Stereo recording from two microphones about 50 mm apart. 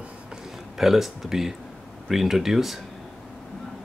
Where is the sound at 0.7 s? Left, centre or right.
Centre.